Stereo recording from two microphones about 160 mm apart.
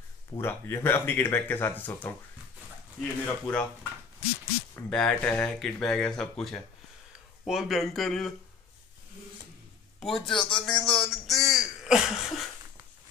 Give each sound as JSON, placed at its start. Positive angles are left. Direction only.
{"t": 0.4, "sound": "speech", "side_deg": 15}
{"t": 4.7, "sound": "speech", "side_deg": 5}
{"t": 9.9, "sound": "a man's voice", "side_deg": 0}
{"t": 10.3, "sound": "speech", "side_deg": 30}
{"t": 10.6, "sound": "a sound", "side_deg": 5}
{"t": 11.5, "sound": "throat clearing", "side_deg": -5}